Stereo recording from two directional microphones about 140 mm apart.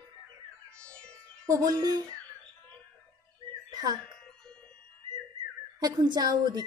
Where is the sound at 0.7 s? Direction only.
10° left (ahead or behind).